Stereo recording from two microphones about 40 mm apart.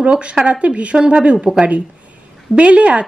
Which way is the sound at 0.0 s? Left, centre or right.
Right.